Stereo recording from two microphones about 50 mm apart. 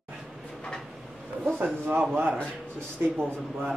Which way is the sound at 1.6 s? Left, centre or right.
Right.